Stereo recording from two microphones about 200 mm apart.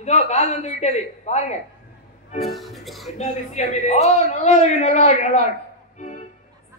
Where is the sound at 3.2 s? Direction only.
35° left (ahead or behind).